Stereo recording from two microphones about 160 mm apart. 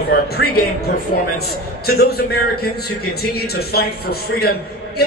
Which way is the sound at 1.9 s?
75° left (ahead or behind).